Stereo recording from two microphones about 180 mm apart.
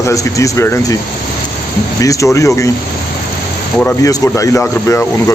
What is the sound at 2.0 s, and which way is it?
Speech, 15° left (ahead or behind).